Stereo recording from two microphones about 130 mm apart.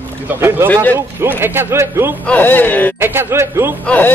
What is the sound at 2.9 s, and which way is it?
Speech, 20° right (ahead or behind).